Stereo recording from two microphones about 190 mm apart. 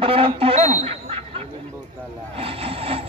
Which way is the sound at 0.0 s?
30° right (ahead or behind).